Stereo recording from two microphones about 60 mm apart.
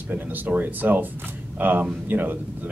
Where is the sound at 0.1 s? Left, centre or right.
Right.